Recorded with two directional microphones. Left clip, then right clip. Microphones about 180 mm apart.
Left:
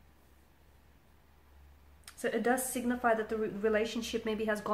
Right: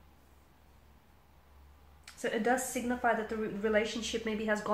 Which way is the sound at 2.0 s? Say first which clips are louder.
Even; 40° left (ahead or behind).